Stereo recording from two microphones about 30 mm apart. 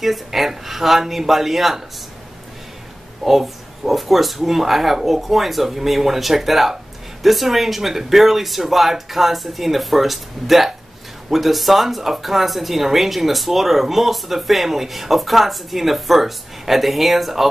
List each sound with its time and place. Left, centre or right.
0.0 s speech: centre
3.3 s speech: centre